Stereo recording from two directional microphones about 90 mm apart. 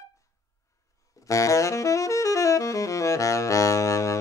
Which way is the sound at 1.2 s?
35° left (ahead or behind).